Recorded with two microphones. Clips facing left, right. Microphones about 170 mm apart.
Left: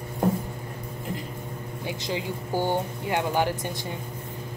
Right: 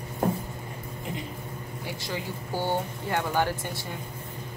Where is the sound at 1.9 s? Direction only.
15° left (ahead or behind).